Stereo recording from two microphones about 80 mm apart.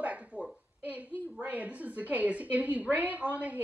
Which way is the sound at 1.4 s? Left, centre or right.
Centre.